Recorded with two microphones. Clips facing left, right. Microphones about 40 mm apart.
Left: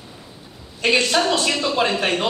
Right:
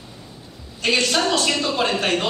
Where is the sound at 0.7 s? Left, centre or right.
Centre.